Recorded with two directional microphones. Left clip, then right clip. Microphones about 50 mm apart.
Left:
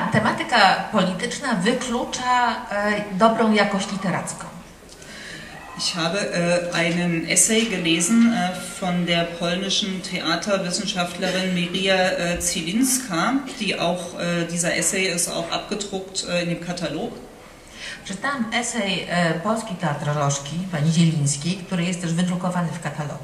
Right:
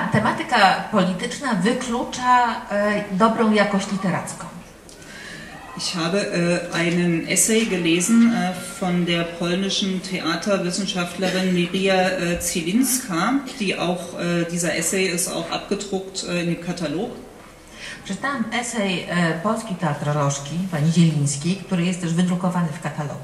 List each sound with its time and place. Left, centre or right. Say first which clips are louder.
0.1 s speech: even; centre
5.8 s speech: even; centre
8.1 s speech: right 1 dB; centre
8.4 s speech: even; centre
18.2 s speech: left 1 dB; centre